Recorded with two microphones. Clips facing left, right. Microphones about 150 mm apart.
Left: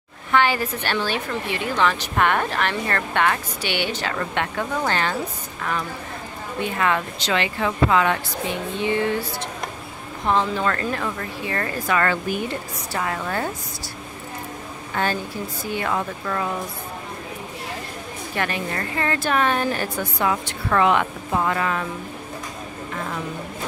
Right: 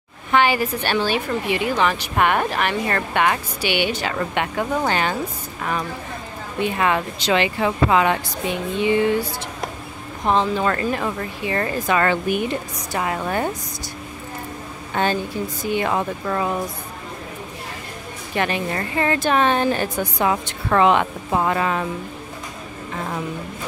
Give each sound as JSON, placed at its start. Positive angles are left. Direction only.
{"t": 0.3, "sound": "a woman's voice", "side_deg": -15}
{"t": 10.2, "sound": "a woman's voice", "side_deg": -20}
{"t": 15.0, "sound": "a woman's voice", "side_deg": -20}
{"t": 18.3, "sound": "a woman's voice", "side_deg": -20}